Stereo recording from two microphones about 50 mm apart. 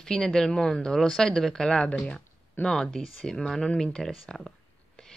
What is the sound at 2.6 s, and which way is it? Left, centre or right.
Speech, left.